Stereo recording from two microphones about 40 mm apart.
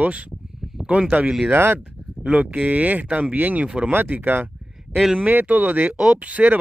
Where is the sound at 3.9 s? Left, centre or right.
Right.